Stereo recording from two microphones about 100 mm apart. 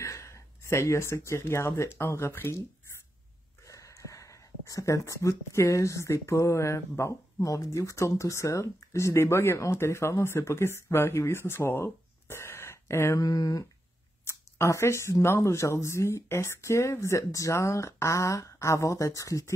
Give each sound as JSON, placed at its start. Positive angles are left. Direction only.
{"t": 0.0, "sound": "speech", "side_deg": 30}
{"t": 3.6, "sound": "speech", "side_deg": 30}